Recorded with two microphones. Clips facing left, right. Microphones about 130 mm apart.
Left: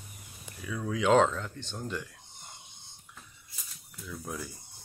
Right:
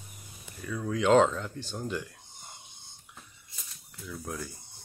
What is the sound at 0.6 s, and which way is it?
Speech, centre (ahead or behind).